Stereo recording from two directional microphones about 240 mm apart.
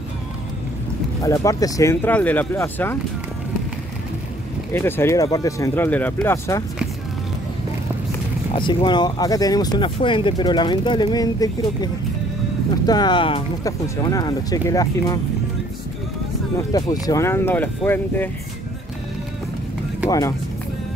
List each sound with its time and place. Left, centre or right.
1.2 s speech: centre
4.7 s speech: centre
8.5 s speech: centre
16.7 s speech: centre
20.1 s speech: centre